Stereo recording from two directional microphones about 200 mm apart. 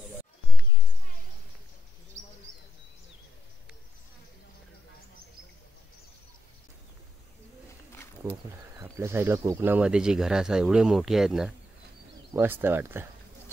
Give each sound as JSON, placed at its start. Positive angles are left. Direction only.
{"t": 8.2, "sound": "speech", "side_deg": -15}